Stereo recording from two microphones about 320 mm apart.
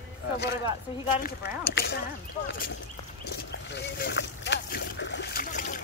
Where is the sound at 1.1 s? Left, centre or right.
Left.